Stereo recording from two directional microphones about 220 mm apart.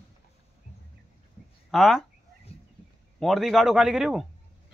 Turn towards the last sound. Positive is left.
turn(degrees=0)  # may be behind; listen again after turning